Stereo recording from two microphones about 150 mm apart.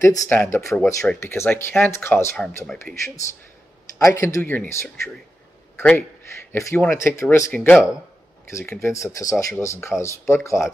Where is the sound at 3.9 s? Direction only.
20° left (ahead or behind).